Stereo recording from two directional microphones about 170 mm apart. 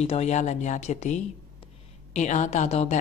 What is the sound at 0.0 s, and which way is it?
A woman's voice, 40° left (ahead or behind).